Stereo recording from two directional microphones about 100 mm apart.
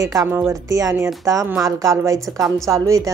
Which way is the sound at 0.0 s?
35° right (ahead or behind).